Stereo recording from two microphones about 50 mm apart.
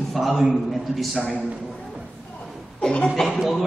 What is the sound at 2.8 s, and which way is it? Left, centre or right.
Speech, centre.